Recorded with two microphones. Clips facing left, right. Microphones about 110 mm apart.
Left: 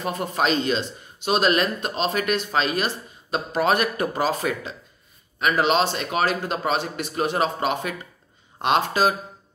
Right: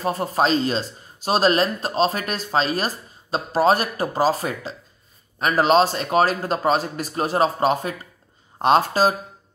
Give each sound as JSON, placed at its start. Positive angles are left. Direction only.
{"t": 0.0, "sound": "speech", "side_deg": -35}